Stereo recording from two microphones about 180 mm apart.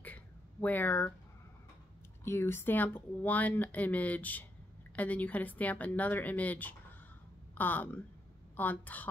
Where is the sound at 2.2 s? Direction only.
15° left (ahead or behind).